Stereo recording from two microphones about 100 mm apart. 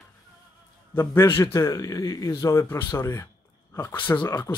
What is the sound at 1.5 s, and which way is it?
Speech, 35° left (ahead or behind).